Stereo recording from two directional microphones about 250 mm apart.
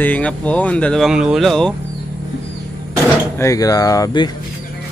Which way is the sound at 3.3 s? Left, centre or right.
Centre.